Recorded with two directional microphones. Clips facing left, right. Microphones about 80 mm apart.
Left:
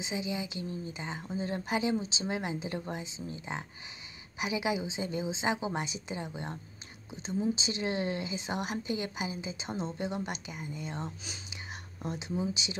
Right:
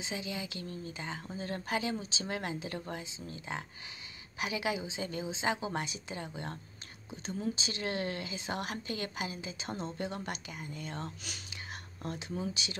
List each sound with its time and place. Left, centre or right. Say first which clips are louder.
0.0 s speech: left 4 dB; centre